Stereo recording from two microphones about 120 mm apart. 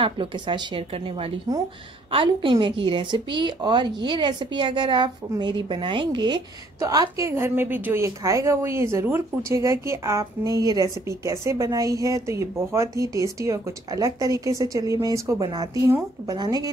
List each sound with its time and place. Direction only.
0.0 s a woman's voice: 45° right (ahead or behind)
6.8 s a woman's voice: 30° right (ahead or behind)